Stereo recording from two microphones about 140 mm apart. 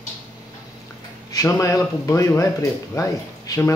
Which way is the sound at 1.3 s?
25° left (ahead or behind).